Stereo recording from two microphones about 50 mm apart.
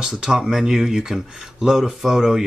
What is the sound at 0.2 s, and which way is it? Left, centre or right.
Speech, centre.